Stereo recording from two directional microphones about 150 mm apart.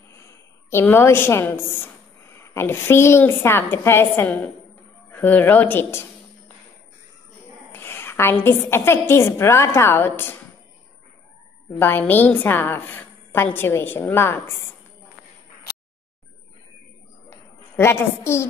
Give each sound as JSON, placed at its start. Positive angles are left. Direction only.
{"t": 0.1, "sound": "a woman's voice", "side_deg": 20}
{"t": 7.7, "sound": "a woman's voice", "side_deg": 15}
{"t": 11.8, "sound": "a woman's voice", "side_deg": 15}
{"t": 17.7, "sound": "a woman's voice", "side_deg": 15}